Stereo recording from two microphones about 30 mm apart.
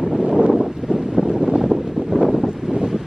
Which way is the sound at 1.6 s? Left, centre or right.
Centre.